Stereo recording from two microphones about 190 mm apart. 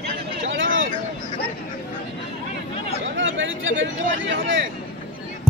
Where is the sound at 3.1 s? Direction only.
80° right.